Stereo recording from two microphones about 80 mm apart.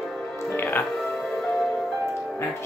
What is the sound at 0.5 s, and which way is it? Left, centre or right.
Music, left.